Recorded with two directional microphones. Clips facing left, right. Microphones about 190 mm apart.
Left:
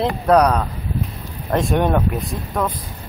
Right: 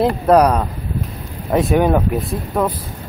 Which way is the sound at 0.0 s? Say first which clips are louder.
Right 3 dB; 5° right (ahead or behind).